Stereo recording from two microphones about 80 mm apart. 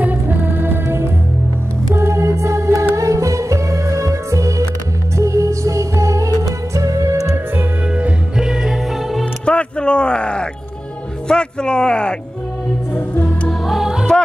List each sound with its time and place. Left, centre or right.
0.0 s music: right
8.4 s music: centre
9.2 s music: centre
13.7 s music: centre